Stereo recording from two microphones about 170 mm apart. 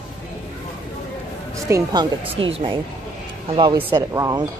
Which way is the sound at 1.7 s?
25° right (ahead or behind).